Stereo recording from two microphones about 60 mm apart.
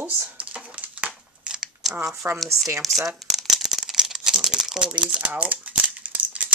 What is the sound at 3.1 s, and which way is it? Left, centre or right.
Crumpling, centre.